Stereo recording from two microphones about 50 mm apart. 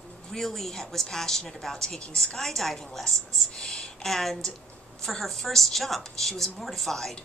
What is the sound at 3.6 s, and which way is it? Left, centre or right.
A woman's voice, centre.